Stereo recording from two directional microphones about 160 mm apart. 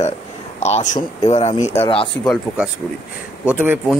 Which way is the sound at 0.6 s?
45° left (ahead or behind).